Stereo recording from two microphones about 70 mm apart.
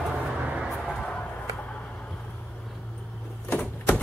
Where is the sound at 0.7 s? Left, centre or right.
Centre.